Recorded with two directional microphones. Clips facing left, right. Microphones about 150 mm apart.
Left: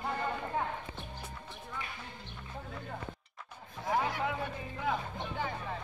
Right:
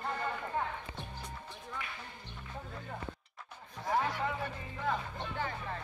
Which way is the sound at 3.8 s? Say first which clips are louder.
Left 1 dB; 5° left (ahead or behind).